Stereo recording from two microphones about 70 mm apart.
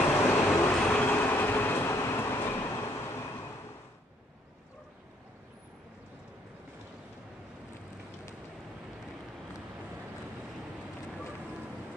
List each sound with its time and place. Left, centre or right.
0.1 s vehicle: left
1.1 s train: left